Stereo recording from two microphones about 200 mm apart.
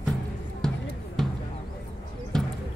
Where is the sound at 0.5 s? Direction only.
5° left (ahead or behind).